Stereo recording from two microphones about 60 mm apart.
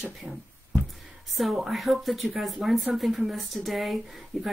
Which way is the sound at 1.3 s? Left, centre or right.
Centre.